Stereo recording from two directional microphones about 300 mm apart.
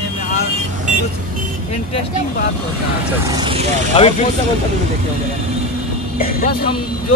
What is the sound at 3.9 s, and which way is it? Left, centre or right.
Speech, centre.